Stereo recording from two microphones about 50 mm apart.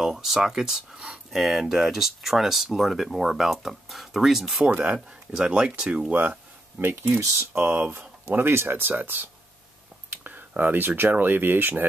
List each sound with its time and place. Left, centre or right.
0.0 s speech: centre
4.9 s speech: centre
6.8 s speech: right
7.2 s speech: right
7.5 s speech: right